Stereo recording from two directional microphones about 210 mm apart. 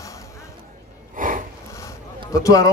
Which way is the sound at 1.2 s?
40° right (ahead or behind).